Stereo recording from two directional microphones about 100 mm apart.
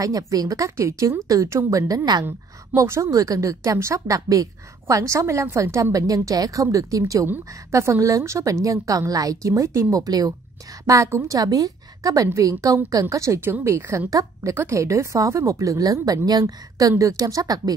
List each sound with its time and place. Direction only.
0.0 s a woman's voice: 35° right (ahead or behind)
10.9 s a woman's voice: 30° right (ahead or behind)